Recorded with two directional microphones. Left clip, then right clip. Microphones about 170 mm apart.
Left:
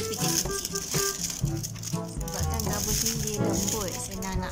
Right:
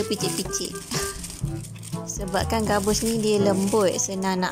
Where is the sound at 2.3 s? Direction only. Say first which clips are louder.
Right 10 dB; 45° right (ahead or behind).